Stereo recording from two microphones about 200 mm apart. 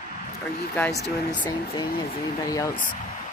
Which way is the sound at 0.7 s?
15° left (ahead or behind).